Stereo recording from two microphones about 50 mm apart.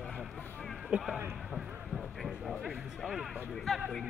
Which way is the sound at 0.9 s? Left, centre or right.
Right.